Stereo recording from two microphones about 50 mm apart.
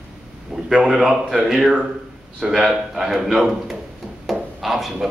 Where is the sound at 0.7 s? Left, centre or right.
Centre.